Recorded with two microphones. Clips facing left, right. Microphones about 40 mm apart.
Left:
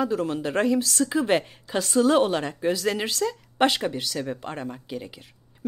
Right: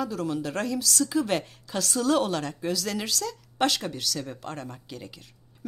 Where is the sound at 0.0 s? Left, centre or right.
Left.